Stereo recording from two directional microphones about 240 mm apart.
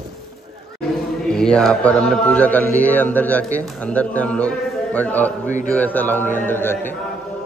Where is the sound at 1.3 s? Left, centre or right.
Centre.